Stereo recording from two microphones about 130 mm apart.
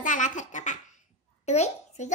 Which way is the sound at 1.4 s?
60° left (ahead or behind).